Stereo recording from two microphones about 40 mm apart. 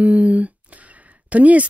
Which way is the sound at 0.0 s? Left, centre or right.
Right.